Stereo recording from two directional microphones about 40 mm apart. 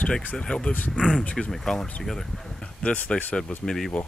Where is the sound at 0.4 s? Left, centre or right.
Left; by 2.4 s centre.